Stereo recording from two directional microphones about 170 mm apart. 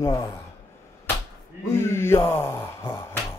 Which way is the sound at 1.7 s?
15° left (ahead or behind).